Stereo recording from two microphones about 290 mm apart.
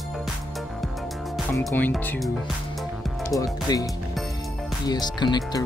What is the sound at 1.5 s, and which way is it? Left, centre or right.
Speech, centre.